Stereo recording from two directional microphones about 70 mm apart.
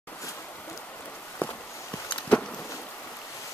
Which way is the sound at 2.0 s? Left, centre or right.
Centre.